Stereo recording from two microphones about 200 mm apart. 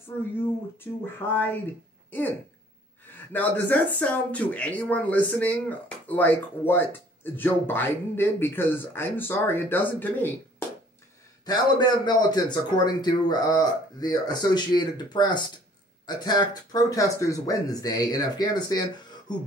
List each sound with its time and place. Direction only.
0.4 s speech: 10° left (ahead or behind)
11.4 s a man's voice: 20° left (ahead or behind)